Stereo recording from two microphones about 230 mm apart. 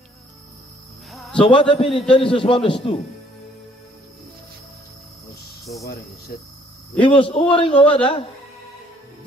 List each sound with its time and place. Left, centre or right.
1.4 s a man's voice: left
5.7 s speech: left
7.0 s a man's voice: left